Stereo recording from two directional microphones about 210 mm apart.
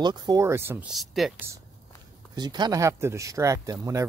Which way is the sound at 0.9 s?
Centre (ahead or behind).